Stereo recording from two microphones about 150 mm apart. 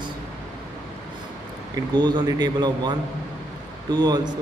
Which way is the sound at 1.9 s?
30° right (ahead or behind).